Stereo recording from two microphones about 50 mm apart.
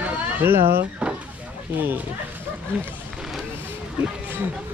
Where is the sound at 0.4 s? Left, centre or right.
Right.